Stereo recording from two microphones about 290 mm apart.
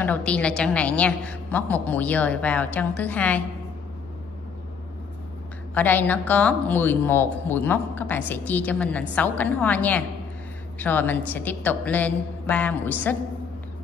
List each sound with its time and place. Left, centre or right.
0.0 s a woman's voice: centre
5.8 s a woman's voice: centre